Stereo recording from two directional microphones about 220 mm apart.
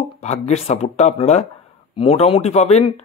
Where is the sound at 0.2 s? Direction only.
30° left (ahead or behind).